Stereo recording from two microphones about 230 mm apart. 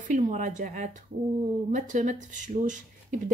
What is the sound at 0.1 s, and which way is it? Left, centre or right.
Speech, right.